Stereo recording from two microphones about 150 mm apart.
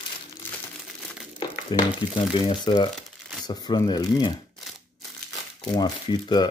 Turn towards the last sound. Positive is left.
turn(degrees=30)  # may be behind; listen again after turning